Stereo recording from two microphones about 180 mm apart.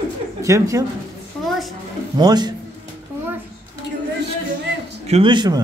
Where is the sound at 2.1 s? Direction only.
25° right (ahead or behind).